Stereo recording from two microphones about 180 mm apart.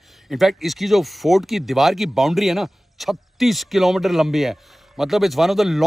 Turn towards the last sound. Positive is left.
turn(degrees=0)  # may be behind; listen again after turning